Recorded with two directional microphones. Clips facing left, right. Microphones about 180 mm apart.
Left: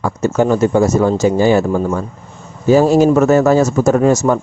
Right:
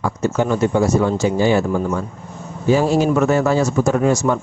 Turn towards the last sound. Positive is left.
turn(degrees=40)  # may be behind; listen again after turning